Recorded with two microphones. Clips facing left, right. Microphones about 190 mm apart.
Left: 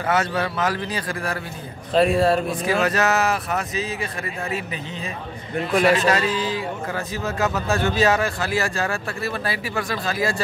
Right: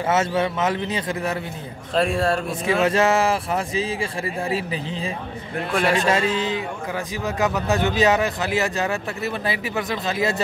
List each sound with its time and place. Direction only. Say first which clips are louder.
0.1 s speech: right 1 dB; 25° right (ahead or behind)
2.0 s speech: left 3 dB; centre (ahead or behind)
2.6 s speech: right 2 dB; 25° right (ahead or behind)
5.7 s speech: left 3 dB; centre (ahead or behind)
6.0 s speech: even; 25° right (ahead or behind)